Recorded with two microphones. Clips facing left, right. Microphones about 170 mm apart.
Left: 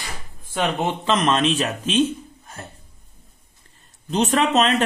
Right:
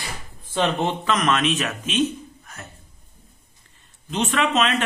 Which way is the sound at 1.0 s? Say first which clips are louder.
Left 4 dB; 25° left (ahead or behind).